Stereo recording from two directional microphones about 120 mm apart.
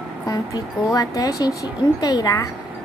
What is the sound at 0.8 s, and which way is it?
Speech, 30° left (ahead or behind).